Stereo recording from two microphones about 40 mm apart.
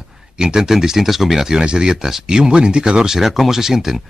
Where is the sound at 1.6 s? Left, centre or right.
Centre.